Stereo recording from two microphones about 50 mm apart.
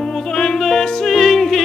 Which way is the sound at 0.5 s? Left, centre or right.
Centre.